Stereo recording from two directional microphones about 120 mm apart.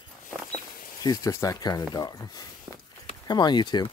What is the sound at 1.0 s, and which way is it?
Speech, 30° left (ahead or behind).